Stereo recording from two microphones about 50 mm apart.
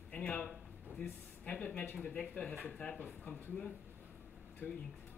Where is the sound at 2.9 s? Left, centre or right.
Left.